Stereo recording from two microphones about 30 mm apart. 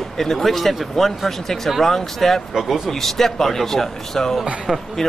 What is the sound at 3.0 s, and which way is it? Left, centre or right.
A man's voice, centre.